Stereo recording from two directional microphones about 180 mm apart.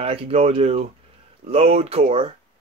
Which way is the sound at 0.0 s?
30° right (ahead or behind).